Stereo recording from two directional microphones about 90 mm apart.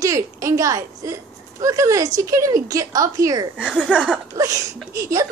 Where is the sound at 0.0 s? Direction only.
35° right (ahead or behind).